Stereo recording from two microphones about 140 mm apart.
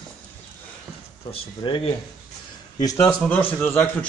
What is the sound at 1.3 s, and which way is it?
Speech, 40° left (ahead or behind).